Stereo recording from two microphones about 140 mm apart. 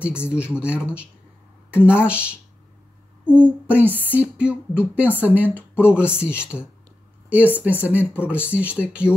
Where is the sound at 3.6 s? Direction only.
10° right (ahead or behind).